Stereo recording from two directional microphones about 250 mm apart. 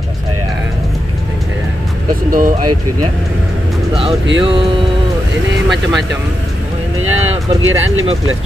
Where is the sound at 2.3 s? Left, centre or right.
Right.